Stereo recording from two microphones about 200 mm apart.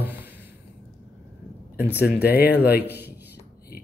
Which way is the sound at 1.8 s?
10° right (ahead or behind).